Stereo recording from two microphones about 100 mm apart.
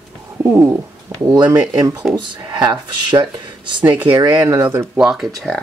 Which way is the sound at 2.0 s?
Centre (ahead or behind).